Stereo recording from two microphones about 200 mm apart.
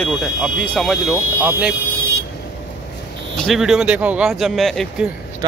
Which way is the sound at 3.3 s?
Centre (ahead or behind).